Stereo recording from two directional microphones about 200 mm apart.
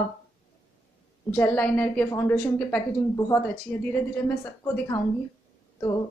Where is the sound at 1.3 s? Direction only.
10° left (ahead or behind).